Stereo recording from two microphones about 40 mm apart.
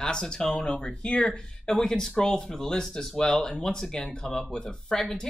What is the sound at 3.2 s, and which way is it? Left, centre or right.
Speech, centre.